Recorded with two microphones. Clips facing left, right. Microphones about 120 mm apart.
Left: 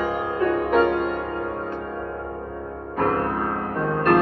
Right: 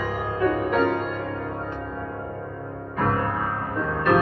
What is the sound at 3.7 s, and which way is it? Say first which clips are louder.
Music: left 3 dB; 55° left (ahead or behind).